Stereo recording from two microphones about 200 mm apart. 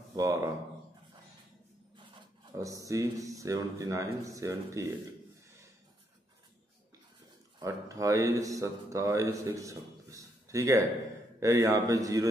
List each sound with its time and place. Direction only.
0.1 s a sound: 15° right (ahead or behind)
2.6 s speech: 15° right (ahead or behind)
7.5 s speech: 15° right (ahead or behind)